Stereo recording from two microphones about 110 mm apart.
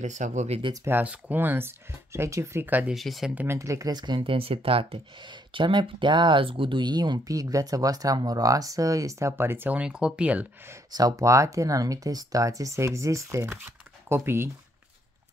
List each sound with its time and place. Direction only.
0.0 s speech: 90° right
0.8 s speech: 20° right (ahead or behind)
2.9 s speech: centre (ahead or behind)
3.4 s speech: 30° right (ahead or behind); by 5.0 s 60° right (ahead or behind)
5.5 s speech: 45° right (ahead or behind); by 10.4 s 10° right (ahead or behind)
10.9 s speech: 35° right (ahead or behind)